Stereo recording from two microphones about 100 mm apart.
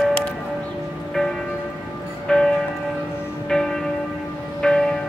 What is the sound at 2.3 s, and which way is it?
Church bell, 5° left (ahead or behind).